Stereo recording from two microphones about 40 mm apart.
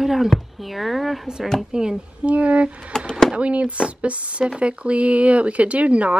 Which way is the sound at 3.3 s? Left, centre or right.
Right.